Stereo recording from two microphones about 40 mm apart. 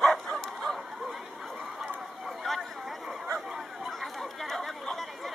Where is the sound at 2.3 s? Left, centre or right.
Centre.